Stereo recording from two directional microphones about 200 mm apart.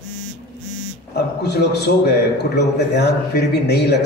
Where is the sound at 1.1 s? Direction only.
55° left (ahead or behind).